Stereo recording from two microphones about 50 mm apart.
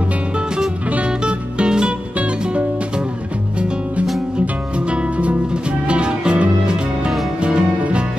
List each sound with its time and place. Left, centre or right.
0.8 s music: right
3.5 s music: right